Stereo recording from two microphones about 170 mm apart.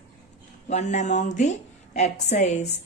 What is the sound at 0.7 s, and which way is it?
A woman's voice, 45° left (ahead or behind).